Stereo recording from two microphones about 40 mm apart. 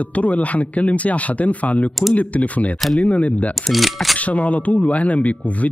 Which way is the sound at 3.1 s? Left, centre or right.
Left.